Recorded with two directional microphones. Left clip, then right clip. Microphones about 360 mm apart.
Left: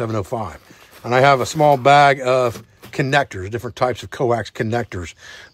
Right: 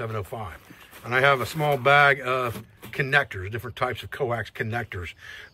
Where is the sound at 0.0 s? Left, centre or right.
Centre.